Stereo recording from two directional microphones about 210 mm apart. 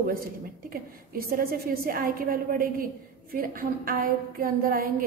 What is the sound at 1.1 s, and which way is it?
A woman's voice, 45° right (ahead or behind).